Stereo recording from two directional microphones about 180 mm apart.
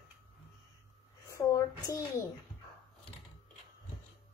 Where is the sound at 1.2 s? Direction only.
15° left (ahead or behind).